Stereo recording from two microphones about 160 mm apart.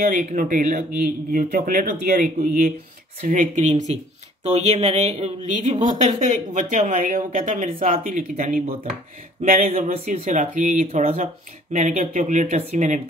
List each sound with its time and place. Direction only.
0.1 s speech: 50° right (ahead or behind)
9.4 s a sound: 55° right (ahead or behind)
10.2 s speech: 50° right (ahead or behind)